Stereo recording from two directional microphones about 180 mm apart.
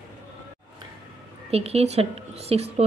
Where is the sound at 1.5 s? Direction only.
35° right (ahead or behind).